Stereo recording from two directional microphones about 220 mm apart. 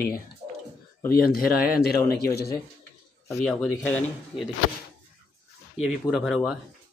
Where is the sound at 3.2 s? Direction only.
10° left (ahead or behind).